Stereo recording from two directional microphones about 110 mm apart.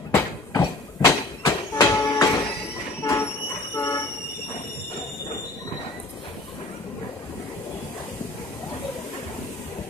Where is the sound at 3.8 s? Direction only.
25° left (ahead or behind).